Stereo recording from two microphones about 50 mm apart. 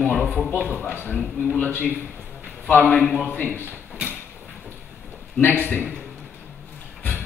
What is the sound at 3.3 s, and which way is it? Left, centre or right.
Speech, left.